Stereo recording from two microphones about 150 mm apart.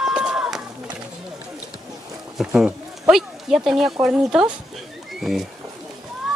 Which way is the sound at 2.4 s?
5° right (ahead or behind).